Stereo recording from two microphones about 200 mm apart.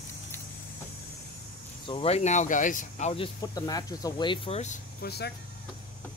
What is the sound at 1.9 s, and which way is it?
Speech, 30° left (ahead or behind).